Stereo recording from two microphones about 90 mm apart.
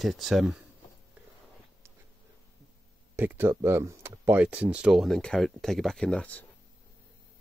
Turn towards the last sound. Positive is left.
turn(degrees=15)  # may be behind; listen again after turning